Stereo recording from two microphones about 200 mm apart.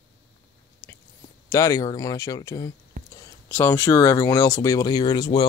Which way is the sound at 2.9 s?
45° right (ahead or behind).